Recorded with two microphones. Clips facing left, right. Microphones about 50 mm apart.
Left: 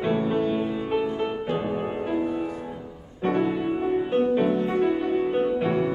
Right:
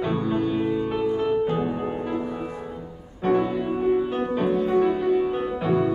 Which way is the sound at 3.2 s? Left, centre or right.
Centre.